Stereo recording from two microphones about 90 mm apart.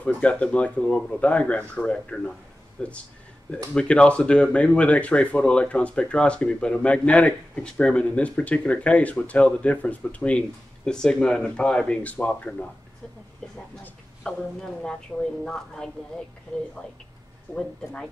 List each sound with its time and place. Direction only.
0.0 s a woman's voice: 15° left (ahead or behind)
14.6 s a woman's voice: 5° left (ahead or behind)
17.5 s speech: 25° left (ahead or behind)